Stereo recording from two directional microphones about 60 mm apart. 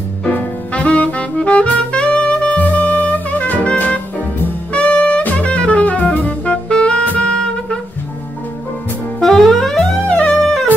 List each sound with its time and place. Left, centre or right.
0.2 s music: centre
4.7 s saxophone: centre
9.2 s saxophone: centre
10.0 s music: left